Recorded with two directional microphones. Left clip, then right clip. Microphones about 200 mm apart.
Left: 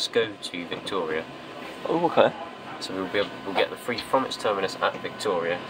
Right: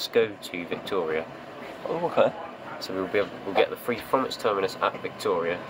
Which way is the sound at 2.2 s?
25° left (ahead or behind).